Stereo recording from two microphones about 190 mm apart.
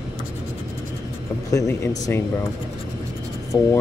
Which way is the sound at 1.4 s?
15° left (ahead or behind).